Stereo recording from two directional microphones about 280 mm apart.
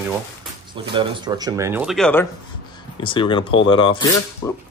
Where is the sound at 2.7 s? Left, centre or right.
Centre.